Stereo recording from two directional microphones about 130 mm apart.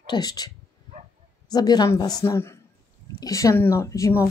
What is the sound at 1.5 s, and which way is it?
A woman's voice, 30° left (ahead or behind).